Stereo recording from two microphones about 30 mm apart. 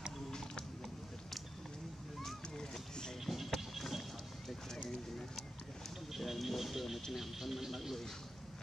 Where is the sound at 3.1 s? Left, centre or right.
Centre.